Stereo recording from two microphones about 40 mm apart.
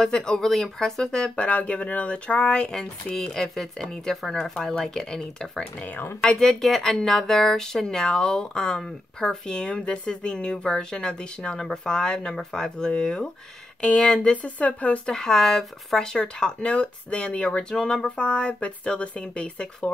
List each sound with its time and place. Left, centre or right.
0.0 s speech: centre
3.2 s speech: centre; by 15.0 s left
15.0 s speech: centre